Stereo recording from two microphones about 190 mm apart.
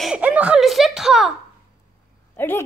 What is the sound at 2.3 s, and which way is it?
Speech, 10° left (ahead or behind).